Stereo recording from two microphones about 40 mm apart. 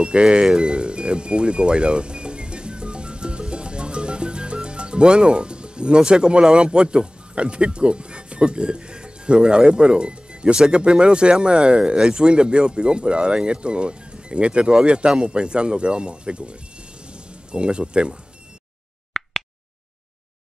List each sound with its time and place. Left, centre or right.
0.0 s speech: right
0.6 s music: right
6.5 s speech: right
19.1 s a sound: centre